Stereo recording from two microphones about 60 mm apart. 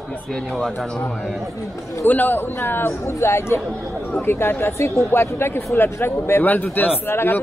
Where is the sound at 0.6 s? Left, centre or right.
Centre.